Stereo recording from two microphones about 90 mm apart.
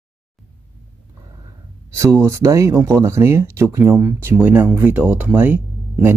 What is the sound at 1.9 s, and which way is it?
Speech, 30° right (ahead or behind).